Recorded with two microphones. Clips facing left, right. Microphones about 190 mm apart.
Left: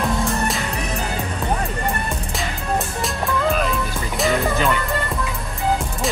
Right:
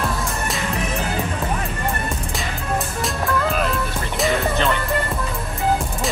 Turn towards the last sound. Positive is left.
turn(degrees=0)  # may be behind; listen again after turning